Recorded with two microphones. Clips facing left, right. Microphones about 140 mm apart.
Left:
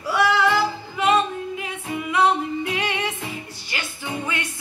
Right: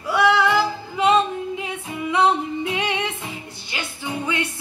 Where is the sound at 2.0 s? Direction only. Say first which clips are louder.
Right 1 dB; 20° right (ahead or behind).